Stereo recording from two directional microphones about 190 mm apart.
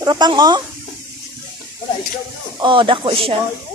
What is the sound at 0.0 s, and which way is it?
Speech, 20° right (ahead or behind).